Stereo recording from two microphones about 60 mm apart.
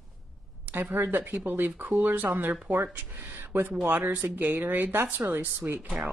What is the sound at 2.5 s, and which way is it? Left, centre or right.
A woman's voice, right.